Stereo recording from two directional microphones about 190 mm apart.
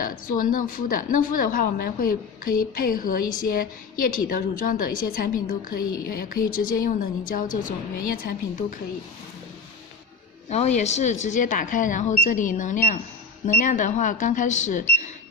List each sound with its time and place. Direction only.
0.0 s a woman's voice: 45° left (ahead or behind)
10.5 s speech: 35° left (ahead or behind)